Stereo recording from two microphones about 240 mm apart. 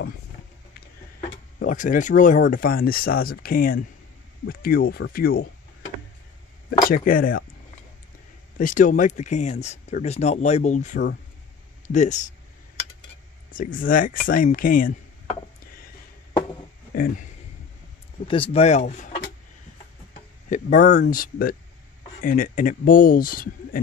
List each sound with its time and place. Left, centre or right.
1.6 s speech: left
6.9 s speech: left
8.5 s speech: left
13.5 s speech: left
16.9 s a sound: left
18.2 s speech: left
20.2 s tick-tock: left
21.0 s speech: left